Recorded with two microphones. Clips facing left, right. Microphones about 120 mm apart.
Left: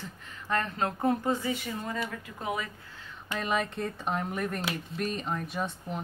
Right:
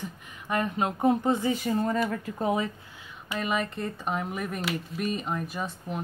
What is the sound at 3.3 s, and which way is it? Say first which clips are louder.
Speech: right 1 dB; centre (ahead or behind).